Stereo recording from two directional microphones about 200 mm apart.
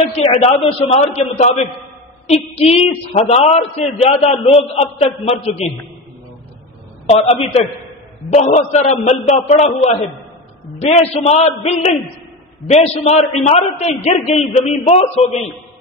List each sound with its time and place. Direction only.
0.2 s a man's voice: 30° left (ahead or behind)
7.1 s a man's voice: 30° left (ahead or behind)